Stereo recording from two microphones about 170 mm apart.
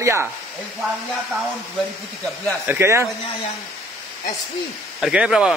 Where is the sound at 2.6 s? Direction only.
15° right (ahead or behind).